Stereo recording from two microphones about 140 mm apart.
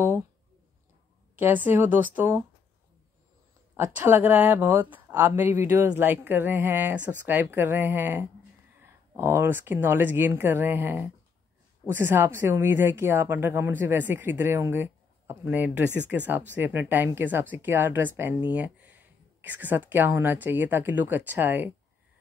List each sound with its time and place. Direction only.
1.3 s a woman's voice: 10° right (ahead or behind)
3.7 s a woman's voice: 15° right (ahead or behind)